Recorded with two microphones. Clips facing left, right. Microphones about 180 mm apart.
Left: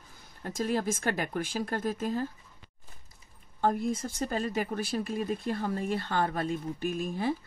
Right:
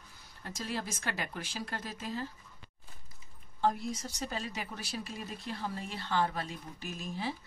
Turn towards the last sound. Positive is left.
turn(degrees=50)  # may be behind; listen again after turning